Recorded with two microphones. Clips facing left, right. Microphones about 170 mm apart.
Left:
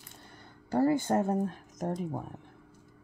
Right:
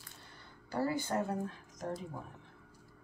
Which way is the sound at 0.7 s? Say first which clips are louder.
Left 8 dB; 50° left (ahead or behind).